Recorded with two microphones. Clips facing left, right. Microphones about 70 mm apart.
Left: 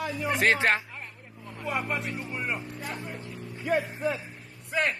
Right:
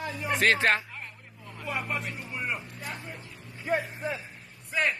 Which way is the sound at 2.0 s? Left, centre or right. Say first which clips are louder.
Left 2 dB; centre.